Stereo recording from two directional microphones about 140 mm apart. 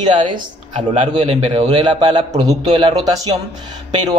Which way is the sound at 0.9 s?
50° right (ahead or behind).